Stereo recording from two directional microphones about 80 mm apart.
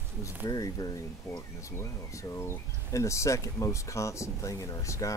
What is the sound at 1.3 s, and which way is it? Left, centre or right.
Speech, left.